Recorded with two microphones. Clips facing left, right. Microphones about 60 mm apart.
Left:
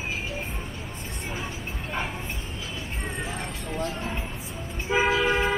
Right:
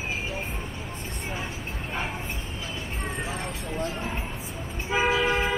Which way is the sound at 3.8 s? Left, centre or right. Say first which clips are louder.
Even; centre.